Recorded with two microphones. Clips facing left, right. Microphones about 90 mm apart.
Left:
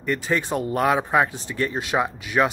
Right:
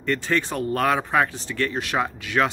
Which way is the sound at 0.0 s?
10° left (ahead or behind).